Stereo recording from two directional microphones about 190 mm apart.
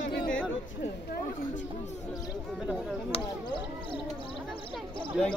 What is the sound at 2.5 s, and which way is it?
Speech, 5° right (ahead or behind).